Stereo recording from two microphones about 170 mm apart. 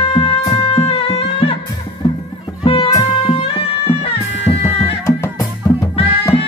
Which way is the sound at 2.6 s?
30° left (ahead or behind).